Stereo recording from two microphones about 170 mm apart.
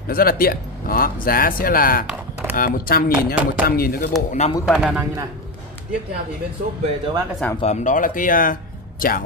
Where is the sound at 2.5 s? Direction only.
60° left (ahead or behind).